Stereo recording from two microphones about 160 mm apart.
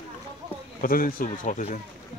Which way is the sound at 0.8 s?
60° left (ahead or behind).